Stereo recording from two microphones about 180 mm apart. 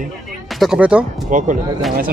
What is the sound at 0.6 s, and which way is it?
Speech, 5° right (ahead or behind).